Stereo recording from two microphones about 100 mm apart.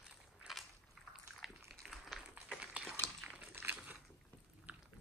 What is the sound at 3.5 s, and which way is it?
Crumpling, 20° right (ahead or behind).